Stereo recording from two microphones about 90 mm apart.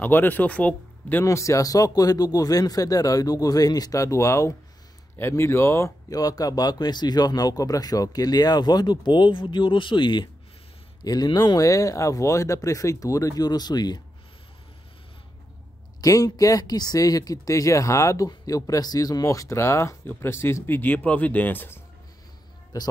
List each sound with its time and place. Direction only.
0.0 s speech: 20° left (ahead or behind)
1.2 s speech: 35° left (ahead or behind); by 14.0 s 50° left (ahead or behind)
16.0 s speech: 40° left (ahead or behind); by 21.8 s 25° left (ahead or behind)